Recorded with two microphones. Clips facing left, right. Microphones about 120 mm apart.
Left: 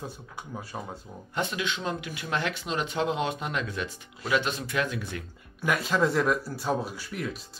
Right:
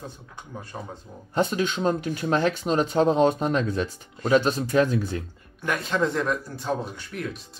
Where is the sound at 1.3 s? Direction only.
40° right (ahead or behind).